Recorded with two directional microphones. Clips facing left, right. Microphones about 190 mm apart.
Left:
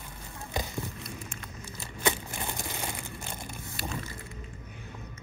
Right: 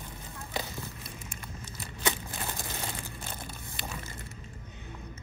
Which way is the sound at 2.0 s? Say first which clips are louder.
Left 3 dB; 15° left (ahead or behind).